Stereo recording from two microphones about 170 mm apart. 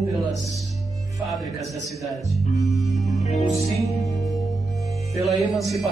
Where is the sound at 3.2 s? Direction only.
45° left (ahead or behind).